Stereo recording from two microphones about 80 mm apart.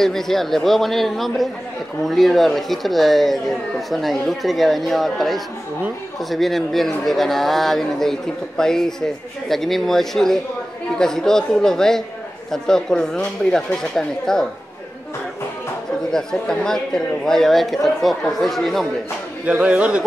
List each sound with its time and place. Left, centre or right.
0.0 s speech: centre
16.1 s speech: centre
19.4 s speech: centre